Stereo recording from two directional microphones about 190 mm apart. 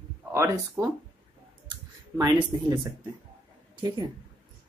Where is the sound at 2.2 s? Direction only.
15° right (ahead or behind).